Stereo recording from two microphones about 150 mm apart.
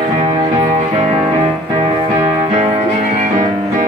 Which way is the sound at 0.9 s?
50° right (ahead or behind).